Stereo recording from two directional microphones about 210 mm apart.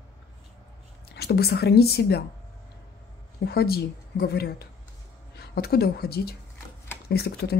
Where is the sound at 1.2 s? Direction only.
50° left (ahead or behind).